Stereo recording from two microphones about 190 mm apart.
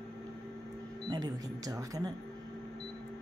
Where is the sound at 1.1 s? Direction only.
20° right (ahead or behind).